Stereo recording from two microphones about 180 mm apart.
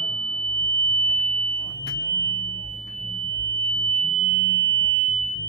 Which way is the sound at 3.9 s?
Centre (ahead or behind).